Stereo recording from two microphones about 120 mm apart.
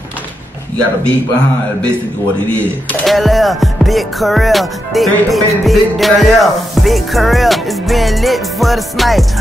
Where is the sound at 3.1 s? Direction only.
Centre (ahead or behind).